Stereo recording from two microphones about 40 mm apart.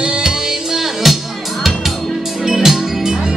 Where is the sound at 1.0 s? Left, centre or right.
Centre.